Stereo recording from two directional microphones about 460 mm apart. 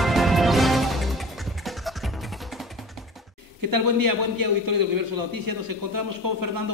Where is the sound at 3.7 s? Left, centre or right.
Right.